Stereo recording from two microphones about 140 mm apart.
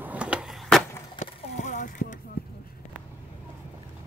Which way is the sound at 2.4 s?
90° left.